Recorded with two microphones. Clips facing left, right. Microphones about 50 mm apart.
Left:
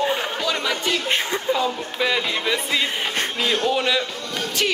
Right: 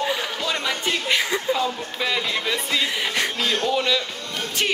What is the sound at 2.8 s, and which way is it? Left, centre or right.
Music, left.